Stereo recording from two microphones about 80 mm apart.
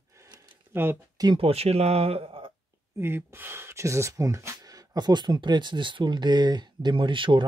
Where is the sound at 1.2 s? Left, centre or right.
Right.